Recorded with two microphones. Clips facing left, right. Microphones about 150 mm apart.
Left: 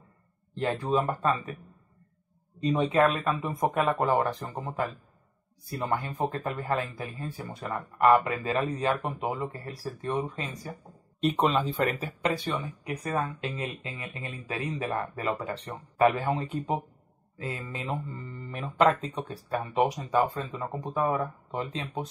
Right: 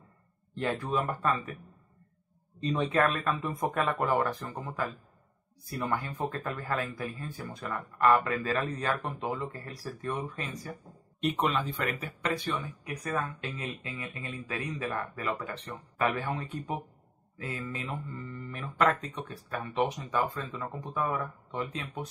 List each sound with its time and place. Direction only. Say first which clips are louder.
0.6 s speech: left 3 dB; 25° left (ahead or behind)
2.6 s speech: left 4 dB; 15° left (ahead or behind)
6.1 s speech: left 3 dB; 20° left (ahead or behind)
11.1 s speech: left 4 dB; 30° left (ahead or behind)